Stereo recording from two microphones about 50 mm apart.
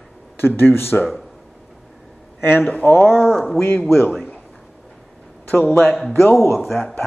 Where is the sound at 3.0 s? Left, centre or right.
Left.